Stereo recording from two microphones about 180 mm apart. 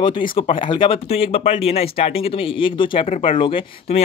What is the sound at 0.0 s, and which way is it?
Speech, 30° left (ahead or behind).